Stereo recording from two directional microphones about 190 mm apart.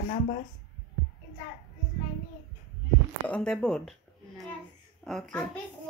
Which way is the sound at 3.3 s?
5° left (ahead or behind).